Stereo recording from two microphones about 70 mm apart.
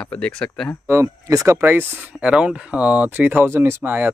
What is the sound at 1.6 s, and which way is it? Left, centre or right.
Speech, right.